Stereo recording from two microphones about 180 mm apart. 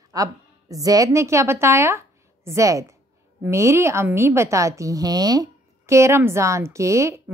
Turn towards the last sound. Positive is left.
turn(degrees=-15)  # may be behind; listen again after turning